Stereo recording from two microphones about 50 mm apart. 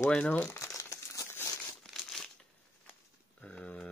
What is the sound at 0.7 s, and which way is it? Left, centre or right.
Crumpling, left.